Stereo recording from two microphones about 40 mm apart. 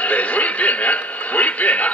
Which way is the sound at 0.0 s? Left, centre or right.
Left.